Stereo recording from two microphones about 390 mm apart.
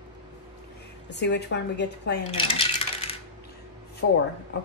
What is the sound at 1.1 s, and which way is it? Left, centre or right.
A woman's voice, left.